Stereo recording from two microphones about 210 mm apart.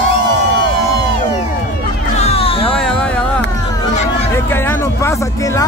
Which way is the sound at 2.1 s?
30° left (ahead or behind).